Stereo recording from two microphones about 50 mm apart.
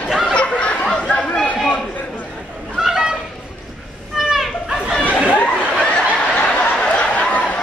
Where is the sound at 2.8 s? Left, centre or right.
Centre.